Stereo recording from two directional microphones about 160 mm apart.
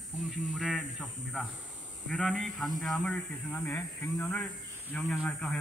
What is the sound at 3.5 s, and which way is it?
Speech, 15° left (ahead or behind).